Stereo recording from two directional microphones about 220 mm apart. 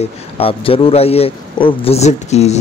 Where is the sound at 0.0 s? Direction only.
25° left (ahead or behind).